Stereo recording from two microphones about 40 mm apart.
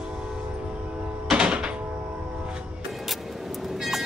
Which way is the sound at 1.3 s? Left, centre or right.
Right.